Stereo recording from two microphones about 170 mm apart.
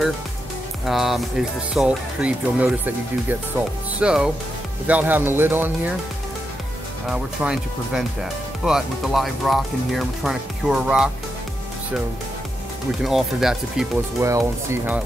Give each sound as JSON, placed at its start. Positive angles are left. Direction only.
{"t": 0.8, "sound": "speech", "side_deg": 0}
{"t": 7.1, "sound": "speech", "side_deg": -5}
{"t": 13.0, "sound": "speech", "side_deg": 0}
{"t": 14.2, "sound": "speech", "side_deg": -20}